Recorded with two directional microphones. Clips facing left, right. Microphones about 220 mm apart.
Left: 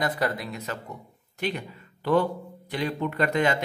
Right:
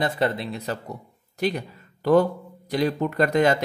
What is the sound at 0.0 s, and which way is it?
Speech, 25° right (ahead or behind).